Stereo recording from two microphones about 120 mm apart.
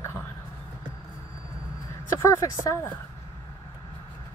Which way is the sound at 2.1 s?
20° left (ahead or behind).